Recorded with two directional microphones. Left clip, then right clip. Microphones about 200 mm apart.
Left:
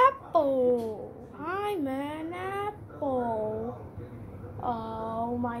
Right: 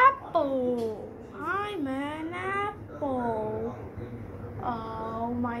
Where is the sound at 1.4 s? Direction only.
35° left (ahead or behind).